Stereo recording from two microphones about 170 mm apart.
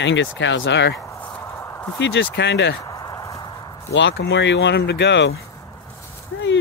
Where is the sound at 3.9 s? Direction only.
80° left.